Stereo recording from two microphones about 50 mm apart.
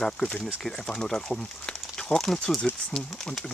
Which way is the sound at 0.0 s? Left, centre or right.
Centre.